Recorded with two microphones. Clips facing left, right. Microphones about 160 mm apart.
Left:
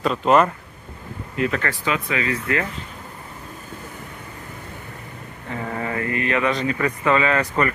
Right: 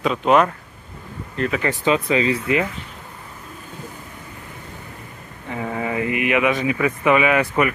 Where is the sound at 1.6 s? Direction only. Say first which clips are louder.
Right 5 dB; 20° right (ahead or behind).